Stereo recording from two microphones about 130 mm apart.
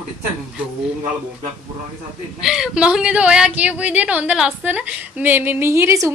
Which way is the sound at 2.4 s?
5° right (ahead or behind).